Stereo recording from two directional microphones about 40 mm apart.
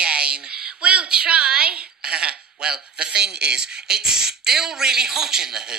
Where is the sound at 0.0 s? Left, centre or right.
Right.